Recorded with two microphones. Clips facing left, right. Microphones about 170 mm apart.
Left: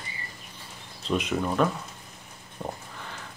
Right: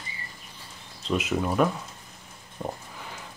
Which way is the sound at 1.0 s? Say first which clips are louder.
Even; centre (ahead or behind).